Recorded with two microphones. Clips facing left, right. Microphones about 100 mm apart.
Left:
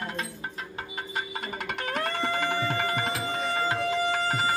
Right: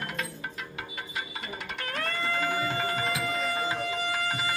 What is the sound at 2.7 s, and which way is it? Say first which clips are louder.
Music: left 2 dB; 55° left (ahead or behind).